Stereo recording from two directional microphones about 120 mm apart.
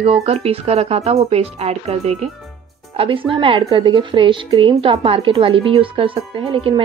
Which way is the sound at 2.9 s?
50° right (ahead or behind).